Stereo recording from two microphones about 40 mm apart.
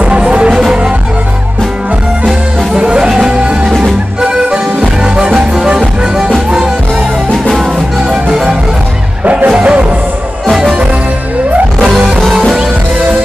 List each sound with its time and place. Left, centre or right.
0.0 s music: right
2.7 s music: right
9.2 s music: right
9.5 s music: right
11.8 s music: centre